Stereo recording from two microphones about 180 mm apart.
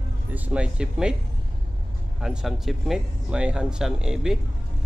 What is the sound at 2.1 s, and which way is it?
Speech, centre (ahead or behind).